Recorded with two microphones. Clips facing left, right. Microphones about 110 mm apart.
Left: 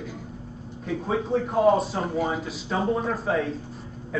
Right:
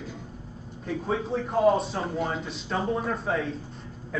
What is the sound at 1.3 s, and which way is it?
A man's voice, 5° left (ahead or behind).